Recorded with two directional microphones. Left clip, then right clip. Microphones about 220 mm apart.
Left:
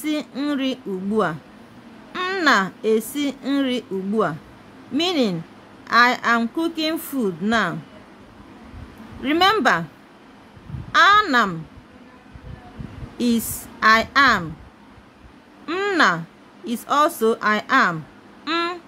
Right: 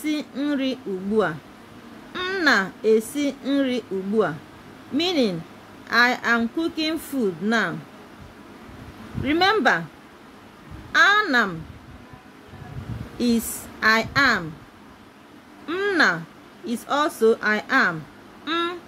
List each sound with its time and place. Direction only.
0.0 s speech: 10° left (ahead or behind)
9.2 s speech: 15° left (ahead or behind)
10.9 s speech: 10° left (ahead or behind)
13.2 s speech: 15° left (ahead or behind)
15.6 s speech: 15° left (ahead or behind)
18.4 s a sound: 15° left (ahead or behind)